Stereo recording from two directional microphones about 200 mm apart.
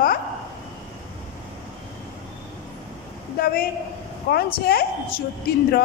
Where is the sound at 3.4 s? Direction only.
50° left (ahead or behind).